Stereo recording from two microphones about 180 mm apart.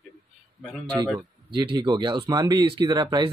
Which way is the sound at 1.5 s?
25° right (ahead or behind).